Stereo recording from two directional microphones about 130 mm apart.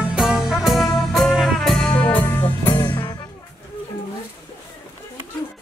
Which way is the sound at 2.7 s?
35° left (ahead or behind).